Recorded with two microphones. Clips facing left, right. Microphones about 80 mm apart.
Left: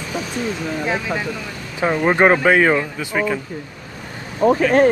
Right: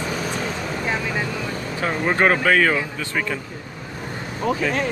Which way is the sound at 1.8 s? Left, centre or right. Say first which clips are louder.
Left 5 dB; centre.